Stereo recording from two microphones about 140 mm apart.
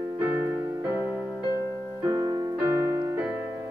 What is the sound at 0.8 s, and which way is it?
Music, 15° right (ahead or behind).